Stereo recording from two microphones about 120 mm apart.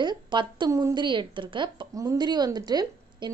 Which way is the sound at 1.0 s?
40° right (ahead or behind).